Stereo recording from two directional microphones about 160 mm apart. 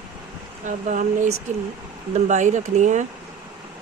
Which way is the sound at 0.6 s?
50° right (ahead or behind).